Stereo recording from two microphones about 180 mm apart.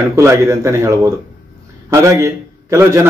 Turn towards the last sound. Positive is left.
turn(degrees=-15)  # may be behind; listen again after turning